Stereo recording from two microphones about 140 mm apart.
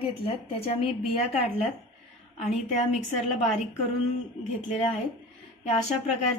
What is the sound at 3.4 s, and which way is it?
Speech, 55° left (ahead or behind).